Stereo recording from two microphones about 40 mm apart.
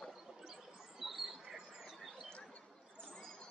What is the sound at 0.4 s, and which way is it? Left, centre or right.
Squawk, centre.